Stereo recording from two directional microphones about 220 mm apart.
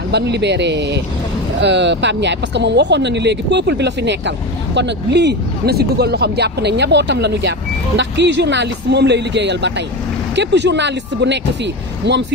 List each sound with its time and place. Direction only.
0.1 s speech: 50° right (ahead or behind)